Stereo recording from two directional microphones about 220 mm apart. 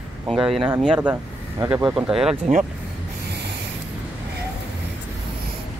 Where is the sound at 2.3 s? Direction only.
35° right (ahead or behind).